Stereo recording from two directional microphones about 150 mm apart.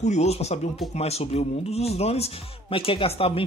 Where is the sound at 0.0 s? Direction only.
50° left (ahead or behind).